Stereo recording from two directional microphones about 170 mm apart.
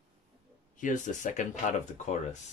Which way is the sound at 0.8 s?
45° left (ahead or behind).